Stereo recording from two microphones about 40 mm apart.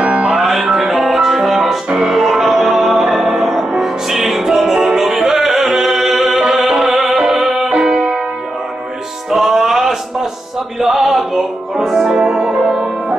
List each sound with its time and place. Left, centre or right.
0.0 s music: right
0.3 s music: centre
1.9 s music: right
2.1 s music: centre
9.3 s a sound: centre
10.8 s music: centre